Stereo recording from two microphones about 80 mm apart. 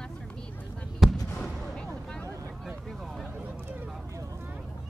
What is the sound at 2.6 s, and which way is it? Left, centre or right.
Vehicle, centre.